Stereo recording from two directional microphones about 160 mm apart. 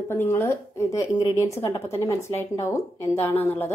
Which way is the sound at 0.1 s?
15° left (ahead or behind).